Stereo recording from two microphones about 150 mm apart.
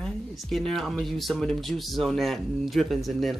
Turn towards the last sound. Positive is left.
turn(degrees=0)  # may be behind; listen again after turning